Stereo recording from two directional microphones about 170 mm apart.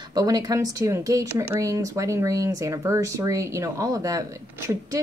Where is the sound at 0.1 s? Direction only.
20° right (ahead or behind).